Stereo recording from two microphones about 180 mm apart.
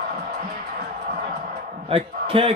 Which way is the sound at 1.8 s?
30° right (ahead or behind).